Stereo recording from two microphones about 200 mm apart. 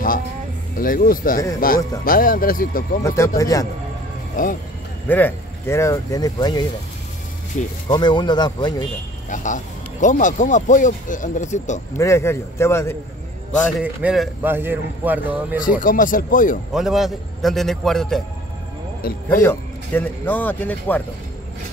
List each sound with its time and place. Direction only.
0.7 s speech: 45° left (ahead or behind)
3.0 s speech: 15° left (ahead or behind)
4.4 s speech: 40° left (ahead or behind)
5.0 s speech: 10° left (ahead or behind)
7.5 s speech: 40° left (ahead or behind)
7.9 s speech: 20° left (ahead or behind)
9.3 s speech: 40° left (ahead or behind)
12.0 s speech: 15° left (ahead or behind)
13.6 s a man's voice: centre (ahead or behind)
15.6 s speech: 45° left (ahead or behind)
16.7 s a man's voice: centre (ahead or behind)
19.2 s speech: 10° left (ahead or behind)